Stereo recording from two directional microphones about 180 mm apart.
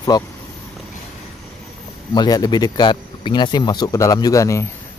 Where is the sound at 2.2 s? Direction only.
20° left (ahead or behind).